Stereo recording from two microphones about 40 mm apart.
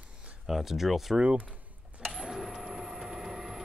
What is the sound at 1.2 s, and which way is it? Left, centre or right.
Speech, right.